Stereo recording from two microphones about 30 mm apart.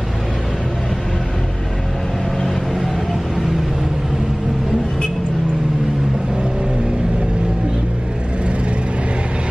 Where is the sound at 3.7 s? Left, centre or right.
Centre.